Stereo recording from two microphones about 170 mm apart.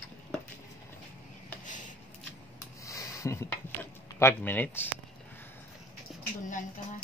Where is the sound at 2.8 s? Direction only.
20° left (ahead or behind).